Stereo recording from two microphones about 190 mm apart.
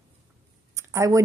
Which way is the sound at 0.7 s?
15° right (ahead or behind).